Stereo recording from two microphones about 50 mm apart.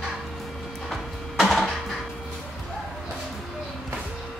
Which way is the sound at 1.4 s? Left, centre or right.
Centre.